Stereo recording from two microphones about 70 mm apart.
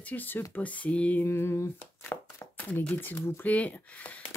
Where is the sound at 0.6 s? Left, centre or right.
Left.